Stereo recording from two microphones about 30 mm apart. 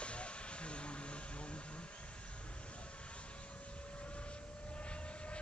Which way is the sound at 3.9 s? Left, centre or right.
Left.